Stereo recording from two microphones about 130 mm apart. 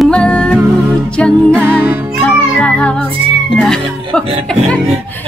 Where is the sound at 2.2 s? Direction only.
10° left (ahead or behind).